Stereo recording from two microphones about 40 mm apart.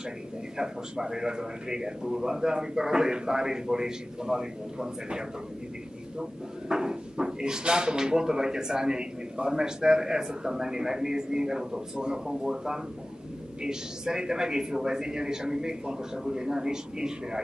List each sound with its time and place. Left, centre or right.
0.6 s speech: centre
6.7 s speech: centre